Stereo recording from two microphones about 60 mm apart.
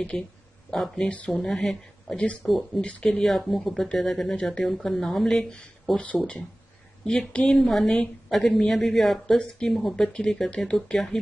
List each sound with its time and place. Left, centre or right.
0.1 s speech: centre
0.9 s speech: centre
2.8 s speech: centre